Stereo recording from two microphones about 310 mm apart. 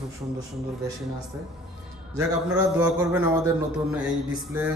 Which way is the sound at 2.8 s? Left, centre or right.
Centre.